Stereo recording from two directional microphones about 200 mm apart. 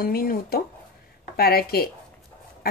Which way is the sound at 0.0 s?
50° left (ahead or behind).